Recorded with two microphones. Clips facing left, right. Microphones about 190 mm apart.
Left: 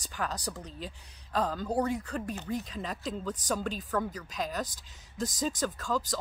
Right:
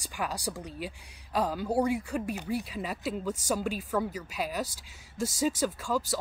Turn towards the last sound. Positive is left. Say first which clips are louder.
# right 2 dB
turn(degrees=-10)  # may be behind; listen again after turning